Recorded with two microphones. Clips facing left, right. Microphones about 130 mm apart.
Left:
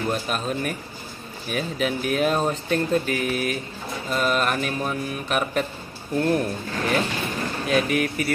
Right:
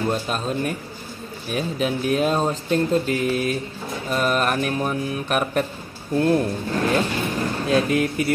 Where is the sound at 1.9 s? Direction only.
25° right (ahead or behind).